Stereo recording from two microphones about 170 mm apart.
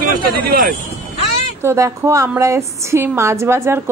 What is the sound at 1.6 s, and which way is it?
A woman's voice, 15° right (ahead or behind).